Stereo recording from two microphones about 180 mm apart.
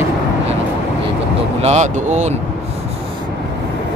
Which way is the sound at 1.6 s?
40° right (ahead or behind).